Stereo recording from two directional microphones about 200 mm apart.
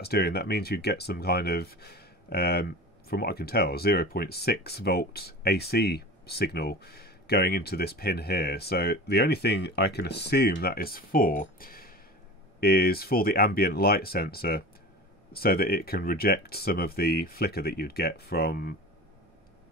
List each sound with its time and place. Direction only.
0.0 s speech: 50° left (ahead or behind)